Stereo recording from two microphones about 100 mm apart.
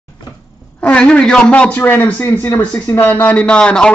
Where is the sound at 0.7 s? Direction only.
10° left (ahead or behind).